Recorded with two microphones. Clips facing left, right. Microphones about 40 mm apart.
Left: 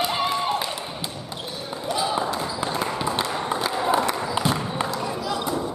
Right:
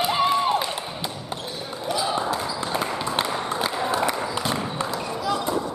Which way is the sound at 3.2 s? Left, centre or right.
Centre.